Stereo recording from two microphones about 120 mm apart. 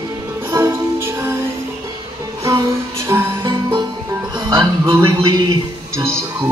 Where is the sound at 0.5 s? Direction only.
20° right (ahead or behind).